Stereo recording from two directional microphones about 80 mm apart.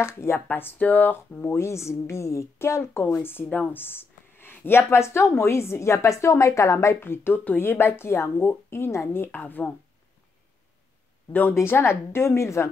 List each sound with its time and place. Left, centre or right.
0.0 s speech: left
11.5 s speech: left